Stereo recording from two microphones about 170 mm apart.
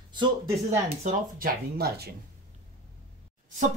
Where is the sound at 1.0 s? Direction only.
55° right (ahead or behind).